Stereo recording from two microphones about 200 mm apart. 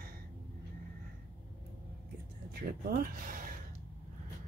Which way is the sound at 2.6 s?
45° right (ahead or behind).